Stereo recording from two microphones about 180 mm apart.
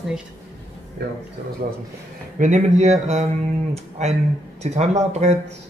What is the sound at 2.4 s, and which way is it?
Speech, 40° right (ahead or behind).